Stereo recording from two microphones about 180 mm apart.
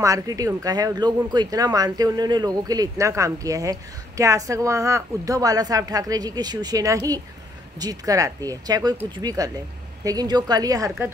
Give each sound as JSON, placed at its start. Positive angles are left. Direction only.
{"t": 0.0, "sound": "speech", "side_deg": -20}